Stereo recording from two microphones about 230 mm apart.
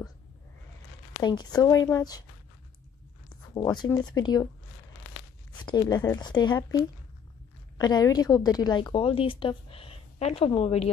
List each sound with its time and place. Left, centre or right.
1.2 s a woman's voice: centre
3.5 s a woman's voice: centre
5.7 s a woman's voice: centre